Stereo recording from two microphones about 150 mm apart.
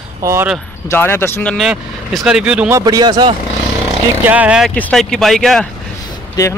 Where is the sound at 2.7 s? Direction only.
25° right (ahead or behind).